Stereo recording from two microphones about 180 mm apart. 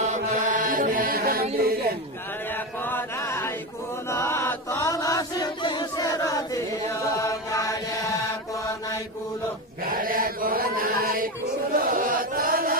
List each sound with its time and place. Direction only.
0.1 s mantra: 45° right (ahead or behind)
2.8 s chant: 15° left (ahead or behind)
9.8 s chant: 55° right (ahead or behind)